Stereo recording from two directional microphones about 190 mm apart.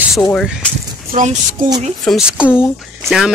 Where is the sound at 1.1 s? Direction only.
40° right (ahead or behind).